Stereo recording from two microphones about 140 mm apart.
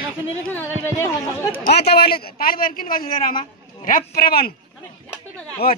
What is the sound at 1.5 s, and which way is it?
A man's voice, 90° left.